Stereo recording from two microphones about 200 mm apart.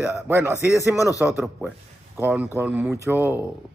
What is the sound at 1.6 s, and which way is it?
Speech, 5° right (ahead or behind).